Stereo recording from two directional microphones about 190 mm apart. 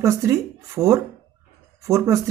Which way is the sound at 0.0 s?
15° right (ahead or behind).